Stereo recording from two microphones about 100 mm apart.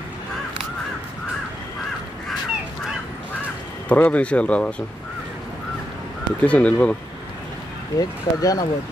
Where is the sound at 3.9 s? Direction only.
15° left (ahead or behind).